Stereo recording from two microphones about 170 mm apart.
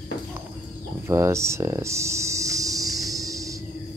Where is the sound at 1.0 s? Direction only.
15° right (ahead or behind).